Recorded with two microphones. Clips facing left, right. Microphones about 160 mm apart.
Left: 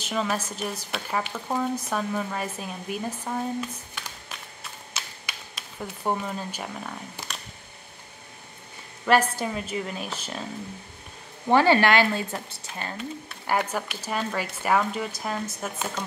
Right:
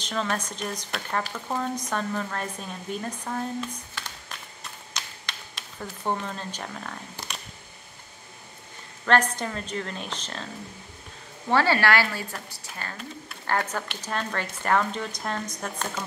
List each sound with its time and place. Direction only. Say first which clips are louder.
0.0 s speech: left 1 dB; 10° left (ahead or behind)
4.9 s a sound: right 1 dB; 5° left (ahead or behind)
6.0 s speech: left 1 dB; 10° left (ahead or behind)
9.0 s speech: left 1 dB; 10° left (ahead or behind)
11.4 s speech: left 3 dB; 20° left (ahead or behind)